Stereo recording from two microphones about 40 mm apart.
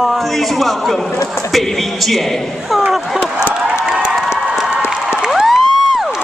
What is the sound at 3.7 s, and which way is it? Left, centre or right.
Crowd, right.